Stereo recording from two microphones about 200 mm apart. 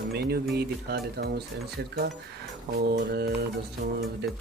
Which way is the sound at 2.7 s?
55° right (ahead or behind).